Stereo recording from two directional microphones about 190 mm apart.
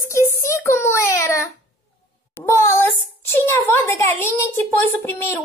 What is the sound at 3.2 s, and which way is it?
A woman's voice, 10° left (ahead or behind).